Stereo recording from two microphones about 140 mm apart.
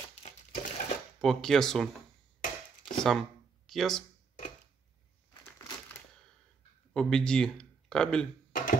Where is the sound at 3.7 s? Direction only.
5° left (ahead or behind).